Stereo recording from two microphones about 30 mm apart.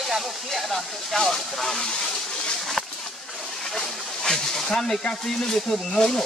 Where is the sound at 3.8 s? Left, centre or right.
Centre.